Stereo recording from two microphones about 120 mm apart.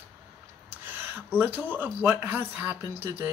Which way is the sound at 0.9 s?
15° right (ahead or behind).